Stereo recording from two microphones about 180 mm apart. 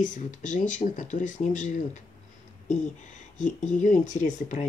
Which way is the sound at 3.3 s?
40° left (ahead or behind).